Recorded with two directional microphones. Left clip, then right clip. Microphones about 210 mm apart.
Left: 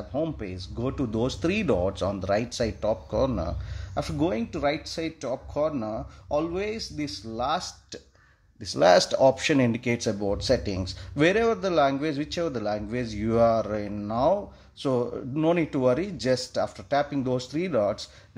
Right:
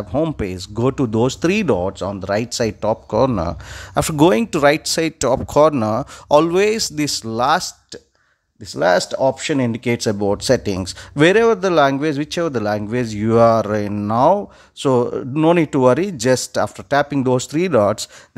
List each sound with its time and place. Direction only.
0.1 s speech: 40° right (ahead or behind)
8.6 s speech: 20° right (ahead or behind); by 18.0 s 40° right (ahead or behind)